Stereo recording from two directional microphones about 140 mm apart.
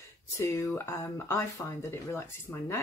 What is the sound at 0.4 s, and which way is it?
Speech, 20° left (ahead or behind).